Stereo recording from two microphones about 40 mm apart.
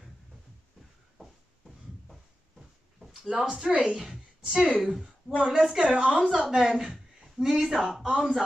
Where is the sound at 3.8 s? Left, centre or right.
Centre.